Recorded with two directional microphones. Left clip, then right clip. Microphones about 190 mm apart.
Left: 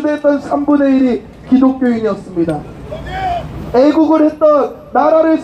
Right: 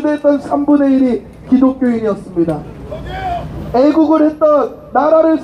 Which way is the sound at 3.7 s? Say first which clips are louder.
Left 1 dB; 30° left (ahead or behind).